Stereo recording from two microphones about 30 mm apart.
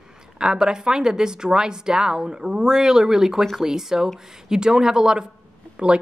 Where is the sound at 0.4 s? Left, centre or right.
Right.